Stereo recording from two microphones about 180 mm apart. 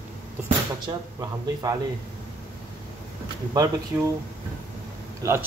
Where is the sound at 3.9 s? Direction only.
10° right (ahead or behind).